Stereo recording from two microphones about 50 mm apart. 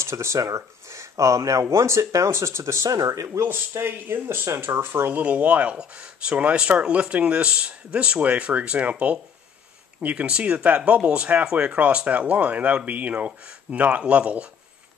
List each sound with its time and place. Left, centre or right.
0.0 s speech: right
3.4 s speech: right
5.2 s speech: right
10.0 s speech: right